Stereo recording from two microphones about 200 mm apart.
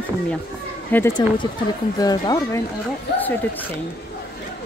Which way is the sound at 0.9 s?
15° left (ahead or behind).